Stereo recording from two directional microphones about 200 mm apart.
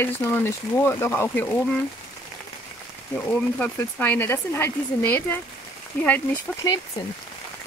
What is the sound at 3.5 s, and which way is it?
Speech, 10° left (ahead or behind).